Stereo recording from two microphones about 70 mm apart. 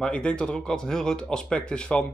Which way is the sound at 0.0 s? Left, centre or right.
Centre.